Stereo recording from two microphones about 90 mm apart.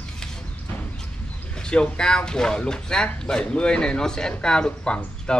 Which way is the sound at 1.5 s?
10° left (ahead or behind).